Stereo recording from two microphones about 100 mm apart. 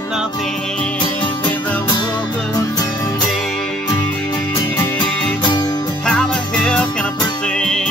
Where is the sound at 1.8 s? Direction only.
45° left (ahead or behind).